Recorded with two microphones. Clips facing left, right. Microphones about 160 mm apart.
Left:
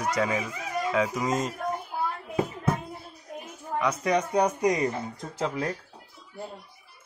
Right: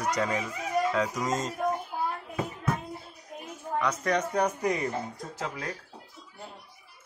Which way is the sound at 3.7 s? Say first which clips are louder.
Left 2 dB; 10° left (ahead or behind).